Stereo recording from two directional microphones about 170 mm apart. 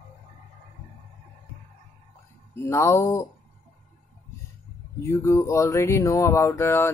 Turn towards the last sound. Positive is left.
turn(degrees=15)  # may be behind; listen again after turning